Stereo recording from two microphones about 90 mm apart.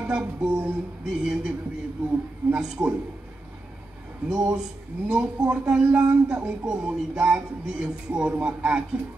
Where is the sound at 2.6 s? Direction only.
10° right (ahead or behind).